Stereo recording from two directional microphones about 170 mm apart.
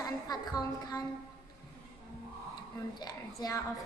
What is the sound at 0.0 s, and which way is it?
A woman's voice, 20° left (ahead or behind).